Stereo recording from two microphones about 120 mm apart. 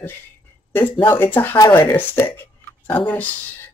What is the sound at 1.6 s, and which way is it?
Speech, 30° left (ahead or behind).